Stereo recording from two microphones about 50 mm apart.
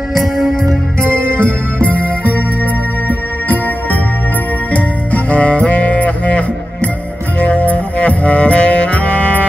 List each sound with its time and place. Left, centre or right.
1.1 s music: left
3.1 s music: left
4.7 s music: left